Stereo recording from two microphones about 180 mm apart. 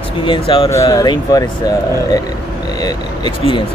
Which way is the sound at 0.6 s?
15° left (ahead or behind).